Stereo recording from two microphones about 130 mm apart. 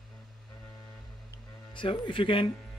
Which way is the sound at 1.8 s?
40° left (ahead or behind).